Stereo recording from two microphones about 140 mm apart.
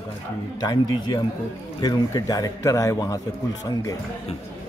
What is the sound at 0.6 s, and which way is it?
Speech, 30° left (ahead or behind).